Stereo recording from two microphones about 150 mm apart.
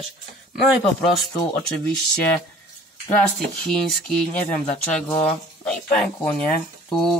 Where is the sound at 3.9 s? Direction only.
5° left (ahead or behind).